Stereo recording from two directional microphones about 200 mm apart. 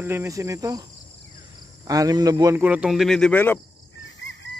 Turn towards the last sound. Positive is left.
turn(degrees=65)  # may be behind; listen again after turning